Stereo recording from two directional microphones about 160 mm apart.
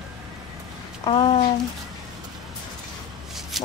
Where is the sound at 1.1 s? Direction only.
30° left (ahead or behind).